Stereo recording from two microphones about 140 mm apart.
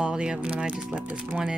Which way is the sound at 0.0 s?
5° right (ahead or behind).